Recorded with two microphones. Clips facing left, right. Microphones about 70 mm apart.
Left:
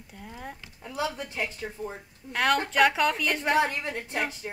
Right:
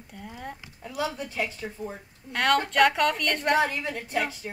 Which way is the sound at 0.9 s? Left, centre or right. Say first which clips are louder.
Right 1 dB; left.